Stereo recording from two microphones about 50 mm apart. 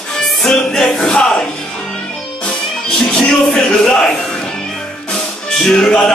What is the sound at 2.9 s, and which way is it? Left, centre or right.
Music, centre.